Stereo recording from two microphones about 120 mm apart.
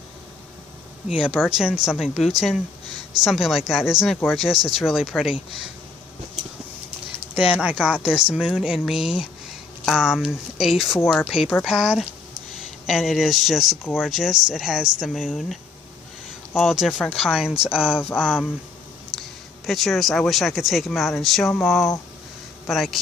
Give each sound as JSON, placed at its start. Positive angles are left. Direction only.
{"t": 1.0, "sound": "speech", "side_deg": -5}
{"t": 7.6, "sound": "speech", "side_deg": -10}
{"t": 16.5, "sound": "speech", "side_deg": -5}
{"t": 17.3, "sound": "speech", "side_deg": -5}